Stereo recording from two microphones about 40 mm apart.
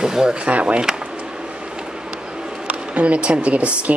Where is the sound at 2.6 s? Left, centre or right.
Right.